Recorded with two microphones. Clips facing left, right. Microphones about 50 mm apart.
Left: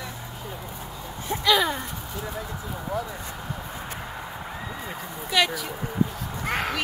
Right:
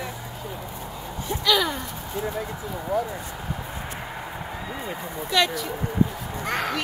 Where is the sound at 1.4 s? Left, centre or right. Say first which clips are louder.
Left 1 dB; left.